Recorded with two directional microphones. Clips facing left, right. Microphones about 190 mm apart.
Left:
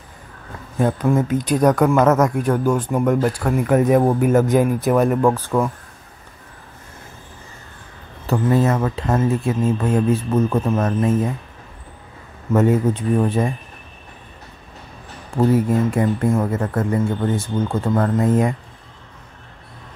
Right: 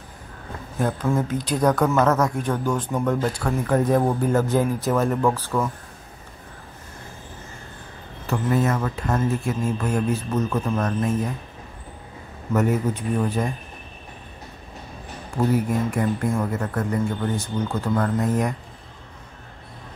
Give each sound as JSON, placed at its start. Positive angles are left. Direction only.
{"t": 0.7, "sound": "speech", "side_deg": 15}
{"t": 8.3, "sound": "speech", "side_deg": 30}
{"t": 12.5, "sound": "speech", "side_deg": 25}
{"t": 15.3, "sound": "speech", "side_deg": 25}